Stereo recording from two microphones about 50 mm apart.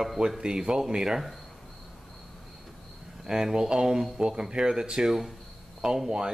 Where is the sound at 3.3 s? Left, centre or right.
Centre.